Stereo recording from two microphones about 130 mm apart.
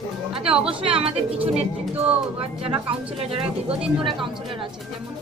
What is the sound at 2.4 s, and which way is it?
Speech, 45° right (ahead or behind).